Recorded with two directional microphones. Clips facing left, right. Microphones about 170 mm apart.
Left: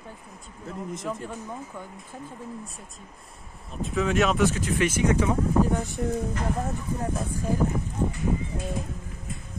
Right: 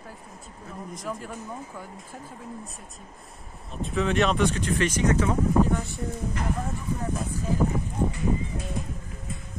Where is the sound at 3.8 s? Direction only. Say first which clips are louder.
Even; centre (ahead or behind).